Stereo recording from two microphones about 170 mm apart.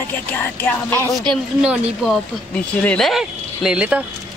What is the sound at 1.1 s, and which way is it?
Speech, centre (ahead or behind).